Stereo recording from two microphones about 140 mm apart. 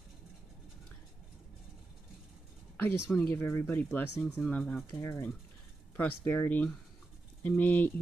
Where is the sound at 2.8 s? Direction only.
15° left (ahead or behind).